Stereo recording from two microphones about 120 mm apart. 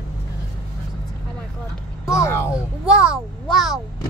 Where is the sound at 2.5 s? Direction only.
10° right (ahead or behind).